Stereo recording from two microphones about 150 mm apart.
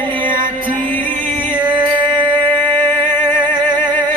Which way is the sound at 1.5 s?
30° right (ahead or behind).